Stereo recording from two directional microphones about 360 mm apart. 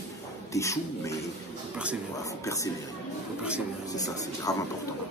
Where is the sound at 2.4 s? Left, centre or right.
Centre.